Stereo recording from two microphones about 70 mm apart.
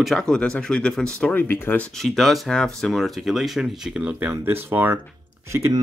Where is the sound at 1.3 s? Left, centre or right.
Left.